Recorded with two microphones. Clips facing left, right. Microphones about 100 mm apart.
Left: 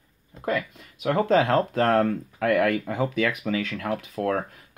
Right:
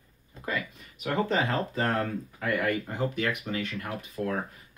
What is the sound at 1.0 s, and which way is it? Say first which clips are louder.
Speech: left 7 dB; 85° left.